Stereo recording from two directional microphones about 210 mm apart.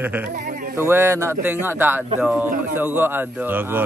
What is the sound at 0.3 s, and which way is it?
Sheep, 40° right (ahead or behind).